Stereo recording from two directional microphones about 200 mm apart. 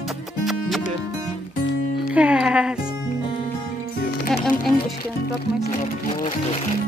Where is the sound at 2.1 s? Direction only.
5° right (ahead or behind).